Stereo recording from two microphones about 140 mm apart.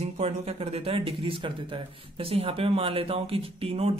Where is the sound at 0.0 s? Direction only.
45° right (ahead or behind).